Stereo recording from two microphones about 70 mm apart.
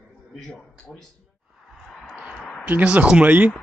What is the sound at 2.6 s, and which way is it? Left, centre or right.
Speech, centre.